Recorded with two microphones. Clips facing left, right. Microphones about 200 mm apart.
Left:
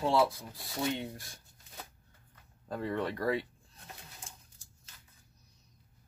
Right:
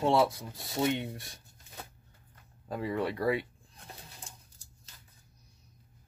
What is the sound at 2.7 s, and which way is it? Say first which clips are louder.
Speech: right 2 dB; 10° right (ahead or behind).